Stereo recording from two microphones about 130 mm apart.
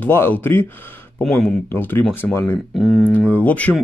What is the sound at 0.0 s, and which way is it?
Speech, 15° left (ahead or behind).